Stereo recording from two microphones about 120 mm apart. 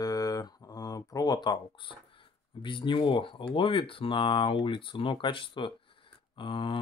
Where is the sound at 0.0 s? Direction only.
30° left (ahead or behind).